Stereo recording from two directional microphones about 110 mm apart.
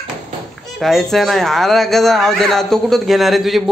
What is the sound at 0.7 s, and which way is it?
Speech, centre (ahead or behind).